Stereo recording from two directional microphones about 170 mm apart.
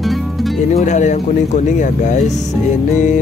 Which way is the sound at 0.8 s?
45° left (ahead or behind).